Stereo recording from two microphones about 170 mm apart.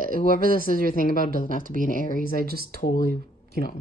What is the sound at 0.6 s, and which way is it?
Speech, 55° left (ahead or behind).